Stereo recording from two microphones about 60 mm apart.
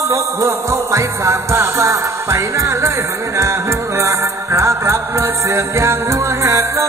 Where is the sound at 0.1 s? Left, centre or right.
Right.